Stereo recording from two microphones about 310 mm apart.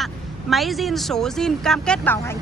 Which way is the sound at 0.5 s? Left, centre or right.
Centre.